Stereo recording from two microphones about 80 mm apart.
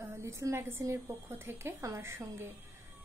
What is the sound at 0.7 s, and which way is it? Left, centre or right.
A woman's voice, right.